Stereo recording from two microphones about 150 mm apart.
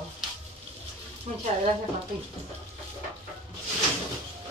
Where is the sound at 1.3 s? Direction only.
55° right (ahead or behind).